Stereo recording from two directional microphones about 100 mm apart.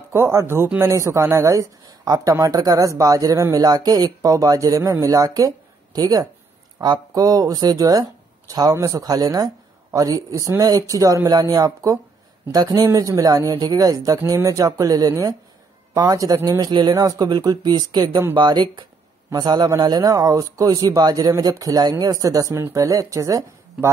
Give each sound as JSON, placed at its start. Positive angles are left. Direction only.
{"t": 0.1, "sound": "speech", "side_deg": -25}